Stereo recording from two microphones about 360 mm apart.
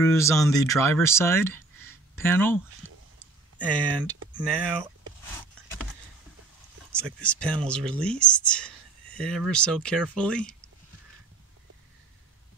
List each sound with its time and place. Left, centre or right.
0.0 s speech: centre
2.8 s whispering: right
3.5 s speech: centre
6.9 s speech: centre